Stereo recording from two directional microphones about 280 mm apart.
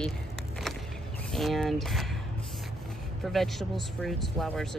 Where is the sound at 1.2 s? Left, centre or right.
Centre.